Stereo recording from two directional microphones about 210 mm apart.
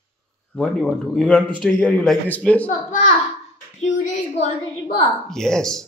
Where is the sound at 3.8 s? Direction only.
35° left (ahead or behind).